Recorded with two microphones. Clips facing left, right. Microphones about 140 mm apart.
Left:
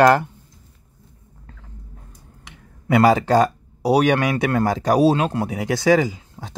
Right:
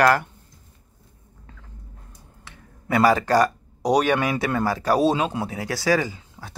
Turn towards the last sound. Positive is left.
turn(degrees=15)  # may be behind; listen again after turning